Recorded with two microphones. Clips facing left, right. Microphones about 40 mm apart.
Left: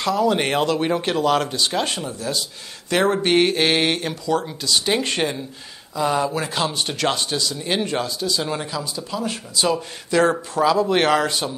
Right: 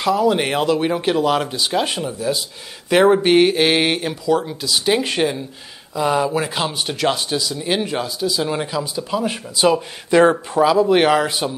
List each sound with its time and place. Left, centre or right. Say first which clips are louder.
0.0 s speech: right 3 dB; centre
8.5 s speech: right 4 dB; centre